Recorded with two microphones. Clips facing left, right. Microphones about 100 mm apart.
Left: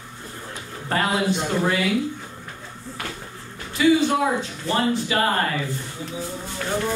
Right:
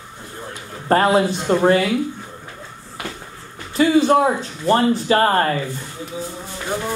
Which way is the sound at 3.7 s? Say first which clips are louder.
Right 4 dB; 40° right (ahead or behind).